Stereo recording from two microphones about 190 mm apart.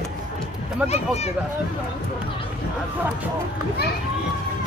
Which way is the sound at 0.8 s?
35° left (ahead or behind).